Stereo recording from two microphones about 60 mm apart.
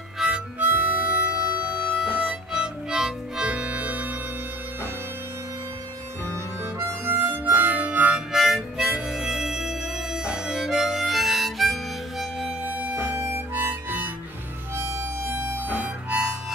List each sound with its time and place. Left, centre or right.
0.2 s harmonica: centre
0.6 s harmonica: right
1.9 s harmonica: centre
6.3 s harmonica: right
8.3 s harmonica: centre
12.6 s harmonica: right
14.8 s harmonica: right
15.2 s music: right
15.8 s harmonica: centre